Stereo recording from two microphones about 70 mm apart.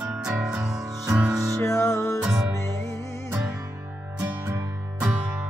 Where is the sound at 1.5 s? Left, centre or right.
Left.